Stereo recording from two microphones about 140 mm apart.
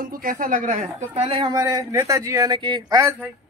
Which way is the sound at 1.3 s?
30° right (ahead or behind).